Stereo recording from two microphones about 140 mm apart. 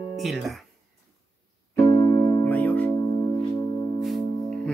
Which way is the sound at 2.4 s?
10° left (ahead or behind).